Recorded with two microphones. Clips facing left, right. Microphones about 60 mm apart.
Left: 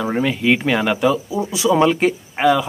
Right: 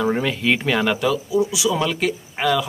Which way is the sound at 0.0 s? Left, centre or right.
Centre.